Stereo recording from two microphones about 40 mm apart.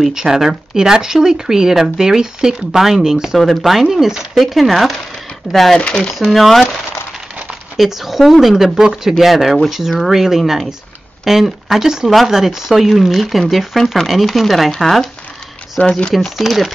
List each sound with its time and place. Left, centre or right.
0.1 s speech: centre
3.3 s speech: centre
5.8 s speech: left
6.3 s speech: centre
7.7 s speech: centre
15.8 s speech: left
16.3 s speech: centre